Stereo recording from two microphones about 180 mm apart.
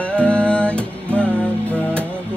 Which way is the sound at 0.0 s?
5° left (ahead or behind).